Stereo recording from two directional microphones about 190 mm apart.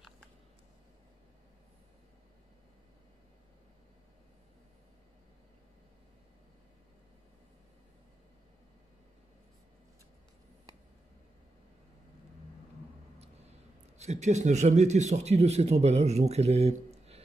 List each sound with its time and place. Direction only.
13.9 s a man's voice: 35° right (ahead or behind)